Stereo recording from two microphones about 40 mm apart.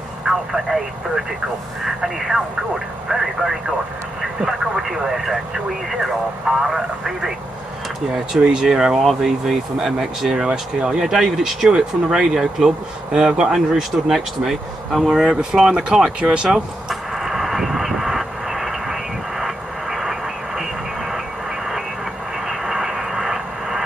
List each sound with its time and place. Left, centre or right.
0.3 s speech: centre
10.3 s speech: centre
13.7 s speech: centre
15.5 s speech: centre
16.4 s radio: centre
22.5 s vehicle: centre